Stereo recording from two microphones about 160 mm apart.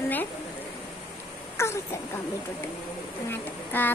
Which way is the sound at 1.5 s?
15° left (ahead or behind).